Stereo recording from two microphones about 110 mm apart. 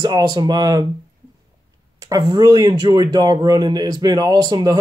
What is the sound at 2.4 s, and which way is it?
Speech, 35° right (ahead or behind).